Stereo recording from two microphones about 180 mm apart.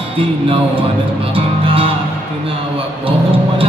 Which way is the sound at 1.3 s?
30° right (ahead or behind).